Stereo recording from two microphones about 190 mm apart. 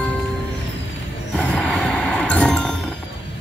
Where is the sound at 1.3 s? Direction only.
5° left (ahead or behind).